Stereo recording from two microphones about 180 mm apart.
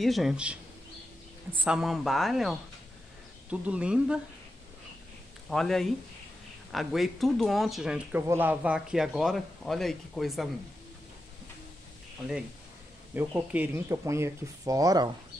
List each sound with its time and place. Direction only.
0.0 s speech: centre (ahead or behind)
1.6 s speech: 5° right (ahead or behind)
5.5 s speech: centre (ahead or behind)
13.1 s speech: 10° right (ahead or behind)